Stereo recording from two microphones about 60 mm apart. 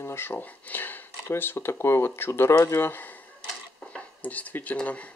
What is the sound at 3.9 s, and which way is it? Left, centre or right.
Speech, left.